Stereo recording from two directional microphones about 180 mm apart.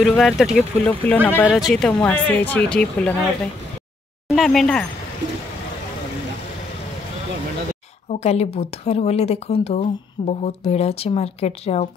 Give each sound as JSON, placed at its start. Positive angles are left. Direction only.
{"t": 0.0, "sound": "speech", "side_deg": 0}
{"t": 0.8, "sound": "speech", "side_deg": 10}
{"t": 4.4, "sound": "speech", "side_deg": 0}
{"t": 8.1, "sound": "a woman's voice", "side_deg": 35}